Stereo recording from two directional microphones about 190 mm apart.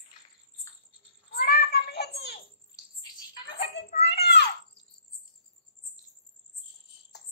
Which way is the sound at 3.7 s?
60° left (ahead or behind).